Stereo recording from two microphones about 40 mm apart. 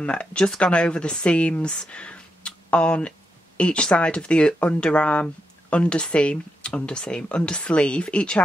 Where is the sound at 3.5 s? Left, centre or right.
Left.